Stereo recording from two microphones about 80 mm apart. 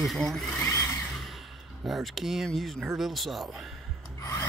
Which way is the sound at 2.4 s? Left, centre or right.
Centre.